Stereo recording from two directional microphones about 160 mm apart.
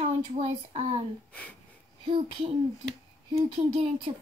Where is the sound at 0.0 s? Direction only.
40° right (ahead or behind).